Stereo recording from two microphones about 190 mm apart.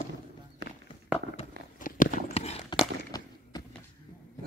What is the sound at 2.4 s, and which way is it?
Horse, 30° left (ahead or behind).